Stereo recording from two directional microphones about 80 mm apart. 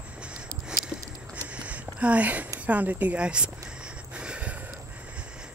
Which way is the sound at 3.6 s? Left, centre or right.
Centre.